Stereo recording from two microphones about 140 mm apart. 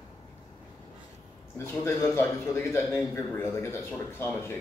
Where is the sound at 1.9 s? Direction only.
15° left (ahead or behind).